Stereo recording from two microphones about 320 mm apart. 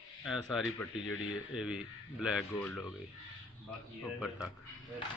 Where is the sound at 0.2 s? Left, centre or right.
Centre.